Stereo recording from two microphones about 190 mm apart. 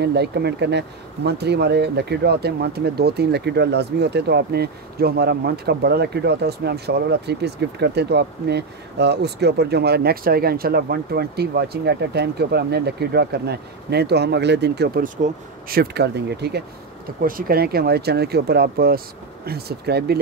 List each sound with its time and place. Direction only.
0.0 s speech: 60° right (ahead or behind)
17.2 s speech: 50° right (ahead or behind)